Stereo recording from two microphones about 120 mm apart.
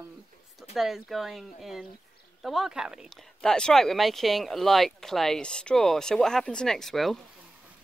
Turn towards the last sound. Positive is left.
turn(degrees=0)  # may be behind; listen again after turning